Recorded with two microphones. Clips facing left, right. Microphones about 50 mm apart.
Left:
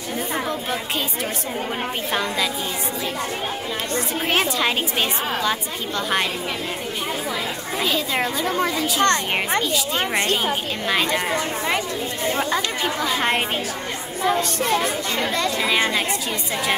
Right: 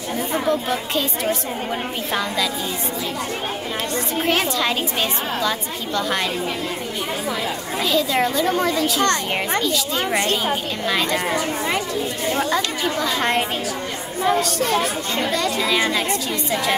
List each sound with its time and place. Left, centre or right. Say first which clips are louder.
4.3 s a child's voice: even; centre
7.8 s a child's voice: right 3 dB; centre
9.6 s a woman's voice: right 1 dB; left
12.4 s a child's voice: right 1 dB; centre
15.6 s a child's voice: even; centre